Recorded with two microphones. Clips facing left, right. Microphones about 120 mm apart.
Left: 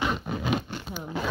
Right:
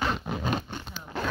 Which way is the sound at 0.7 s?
10° left (ahead or behind).